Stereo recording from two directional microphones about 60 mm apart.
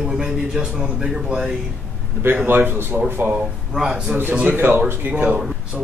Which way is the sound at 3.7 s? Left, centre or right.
Centre.